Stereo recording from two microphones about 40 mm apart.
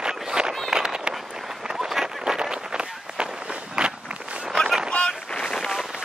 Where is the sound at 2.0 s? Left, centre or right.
Centre.